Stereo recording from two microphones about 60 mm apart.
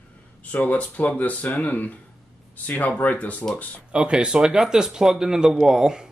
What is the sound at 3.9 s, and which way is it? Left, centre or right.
Speech, centre.